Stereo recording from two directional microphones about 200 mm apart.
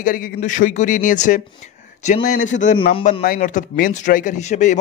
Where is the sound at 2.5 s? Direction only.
40° left (ahead or behind).